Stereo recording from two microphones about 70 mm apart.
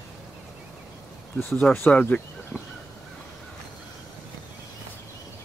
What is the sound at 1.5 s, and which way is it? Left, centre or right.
Speech, centre.